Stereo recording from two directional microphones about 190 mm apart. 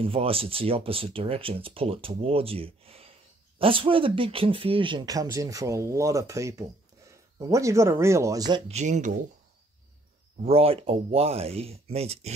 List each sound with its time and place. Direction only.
0.0 s speech: 30° right (ahead or behind)
8.7 s speech: 40° right (ahead or behind)
10.4 s speech: 30° right (ahead or behind)